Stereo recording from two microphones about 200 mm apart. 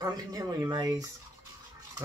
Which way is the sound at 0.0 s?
20° right (ahead or behind).